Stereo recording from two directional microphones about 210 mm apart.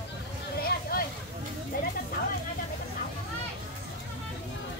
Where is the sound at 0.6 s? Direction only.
45° left (ahead or behind).